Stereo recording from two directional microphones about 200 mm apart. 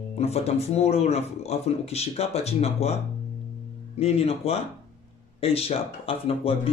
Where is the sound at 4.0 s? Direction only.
30° left (ahead or behind).